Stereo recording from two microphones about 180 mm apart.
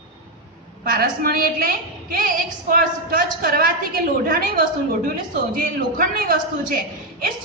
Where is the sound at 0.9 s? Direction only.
55° right (ahead or behind).